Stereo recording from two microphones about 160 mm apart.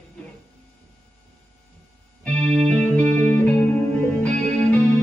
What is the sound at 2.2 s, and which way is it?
Music, 5° left (ahead or behind).